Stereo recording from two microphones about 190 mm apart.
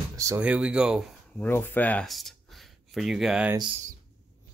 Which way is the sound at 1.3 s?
10° left (ahead or behind).